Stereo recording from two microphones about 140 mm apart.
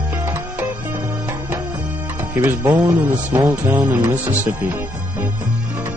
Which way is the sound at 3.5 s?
10° right (ahead or behind).